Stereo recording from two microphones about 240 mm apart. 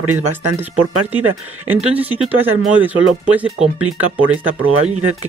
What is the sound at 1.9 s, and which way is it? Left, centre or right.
Speech, centre.